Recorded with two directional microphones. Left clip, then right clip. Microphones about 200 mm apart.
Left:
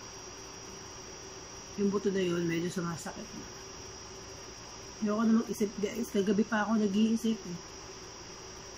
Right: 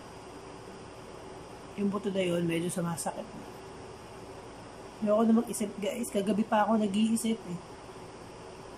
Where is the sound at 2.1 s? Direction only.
10° right (ahead or behind).